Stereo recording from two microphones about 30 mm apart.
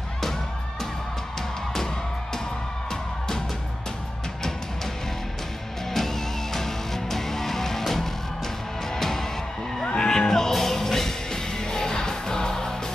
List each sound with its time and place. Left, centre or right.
2.9 s music: centre
5.9 s music: centre